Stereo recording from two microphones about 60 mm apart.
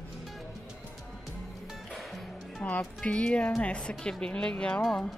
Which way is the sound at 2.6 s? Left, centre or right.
Left.